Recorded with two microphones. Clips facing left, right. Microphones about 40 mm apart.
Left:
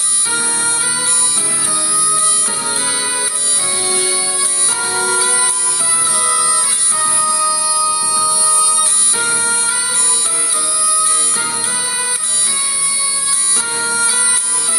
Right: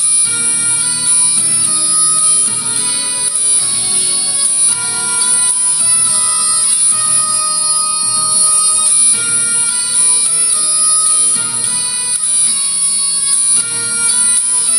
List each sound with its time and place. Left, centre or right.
0.3 s music: left
4.7 s music: left
10.8 s music: left
13.7 s music: left